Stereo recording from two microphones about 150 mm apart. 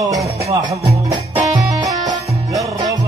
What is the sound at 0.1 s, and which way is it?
Music, 20° right (ahead or behind).